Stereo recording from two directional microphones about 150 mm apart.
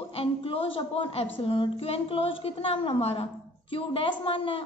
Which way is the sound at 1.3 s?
35° left (ahead or behind).